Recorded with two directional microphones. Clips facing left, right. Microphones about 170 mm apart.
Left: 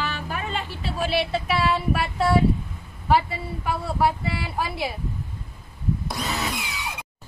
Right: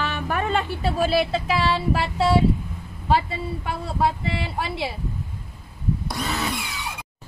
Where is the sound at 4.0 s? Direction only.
25° right (ahead or behind).